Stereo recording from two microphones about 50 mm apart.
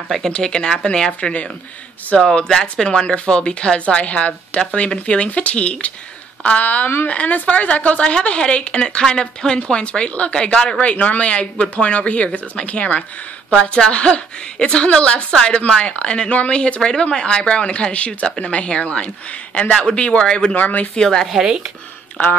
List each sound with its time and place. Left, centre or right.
0.3 s a woman's voice: centre
20.5 s speech: left
20.9 s speech: centre
21.3 s speech: centre
22.2 s speech: left